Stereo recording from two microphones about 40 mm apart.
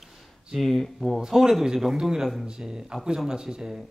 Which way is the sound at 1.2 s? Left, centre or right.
Centre.